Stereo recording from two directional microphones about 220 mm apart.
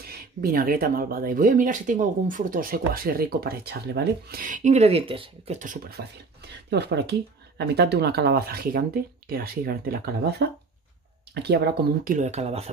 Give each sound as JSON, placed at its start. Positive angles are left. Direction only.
{"t": 0.0, "sound": "speech", "side_deg": -40}